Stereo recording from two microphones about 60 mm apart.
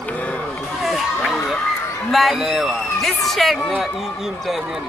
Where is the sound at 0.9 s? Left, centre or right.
Centre.